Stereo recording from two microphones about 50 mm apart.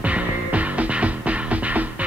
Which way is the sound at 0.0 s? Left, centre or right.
Right.